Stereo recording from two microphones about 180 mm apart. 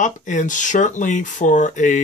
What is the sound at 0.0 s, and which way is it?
Speech, 45° left (ahead or behind).